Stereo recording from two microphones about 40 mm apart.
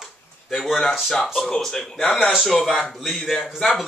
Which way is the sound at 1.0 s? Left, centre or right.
Centre.